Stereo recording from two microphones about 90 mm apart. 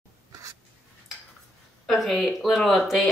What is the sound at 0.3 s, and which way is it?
Writing, 35° right (ahead or behind).